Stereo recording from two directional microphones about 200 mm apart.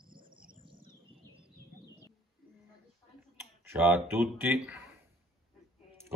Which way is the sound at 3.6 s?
10° right (ahead or behind).